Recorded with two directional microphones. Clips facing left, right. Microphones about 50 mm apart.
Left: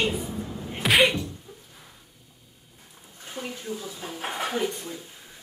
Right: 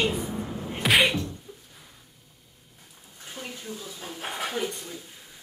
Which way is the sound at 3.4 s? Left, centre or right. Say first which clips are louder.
Left 4 dB; centre.